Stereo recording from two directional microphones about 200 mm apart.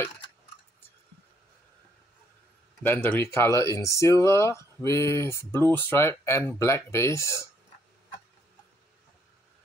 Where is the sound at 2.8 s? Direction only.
10° left (ahead or behind).